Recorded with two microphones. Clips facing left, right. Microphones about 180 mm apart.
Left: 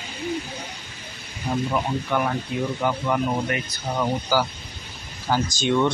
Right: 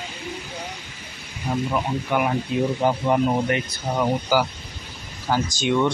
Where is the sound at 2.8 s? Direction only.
25° right (ahead or behind).